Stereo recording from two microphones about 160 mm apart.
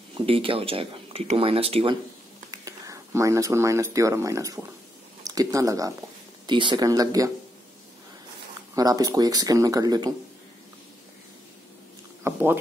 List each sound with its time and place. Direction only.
0.1 s speech: 35° right (ahead or behind)
2.6 s speech: 20° right (ahead or behind)
8.7 s speech: 20° right (ahead or behind)
12.2 s a sound: 15° right (ahead or behind)